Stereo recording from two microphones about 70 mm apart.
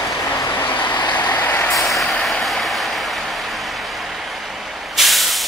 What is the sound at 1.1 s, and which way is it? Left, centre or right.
Vehicle, left.